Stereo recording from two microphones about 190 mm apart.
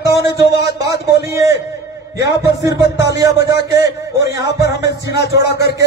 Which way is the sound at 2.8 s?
65° left (ahead or behind).